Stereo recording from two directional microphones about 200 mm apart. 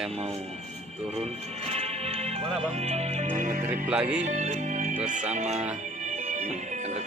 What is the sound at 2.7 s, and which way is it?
Music, 30° right (ahead or behind).